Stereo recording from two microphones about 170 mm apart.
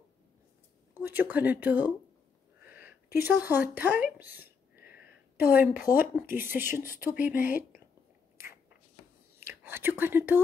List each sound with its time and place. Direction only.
0.9 s speech: 10° right (ahead or behind)
2.6 s a sound: 10° right (ahead or behind)
3.2 s speech: 10° right (ahead or behind)
4.8 s a sound: 10° right (ahead or behind)
5.5 s speech: 10° right (ahead or behind)
9.4 s speech: 10° right (ahead or behind)